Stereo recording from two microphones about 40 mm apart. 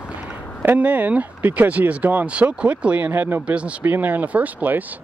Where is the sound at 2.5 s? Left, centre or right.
Right.